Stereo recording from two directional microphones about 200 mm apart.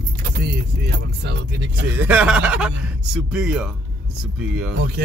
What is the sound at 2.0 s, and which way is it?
Speech, 5° right (ahead or behind).